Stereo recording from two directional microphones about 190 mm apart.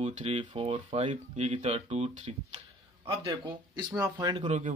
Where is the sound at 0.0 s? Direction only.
30° right (ahead or behind).